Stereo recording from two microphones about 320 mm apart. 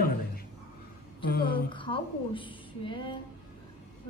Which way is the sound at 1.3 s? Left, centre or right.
Left.